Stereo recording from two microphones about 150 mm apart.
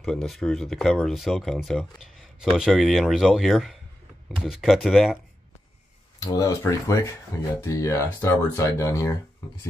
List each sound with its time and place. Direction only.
0.0 s speech: centre (ahead or behind)
6.1 s speech: 20° left (ahead or behind)